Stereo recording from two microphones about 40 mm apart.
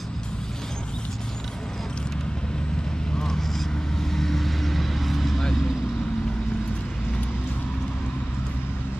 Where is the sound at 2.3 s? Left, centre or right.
Left; by 5.4 s centre.